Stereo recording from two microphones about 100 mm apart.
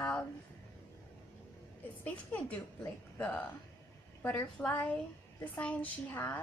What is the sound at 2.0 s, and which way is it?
A woman's voice, 15° left (ahead or behind).